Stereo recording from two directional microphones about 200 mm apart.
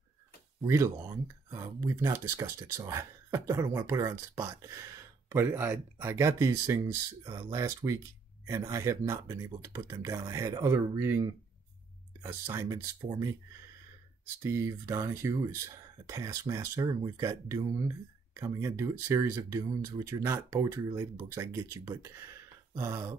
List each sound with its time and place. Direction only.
0.7 s speech: 15° right (ahead or behind)
14.4 s speech: 15° right (ahead or behind)